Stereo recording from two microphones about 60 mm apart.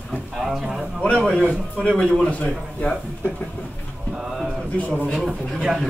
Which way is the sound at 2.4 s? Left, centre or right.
Centre.